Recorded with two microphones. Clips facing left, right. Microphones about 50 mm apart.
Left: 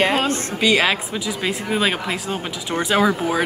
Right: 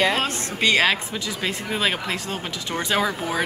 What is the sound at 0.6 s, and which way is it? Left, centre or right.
Speech, centre.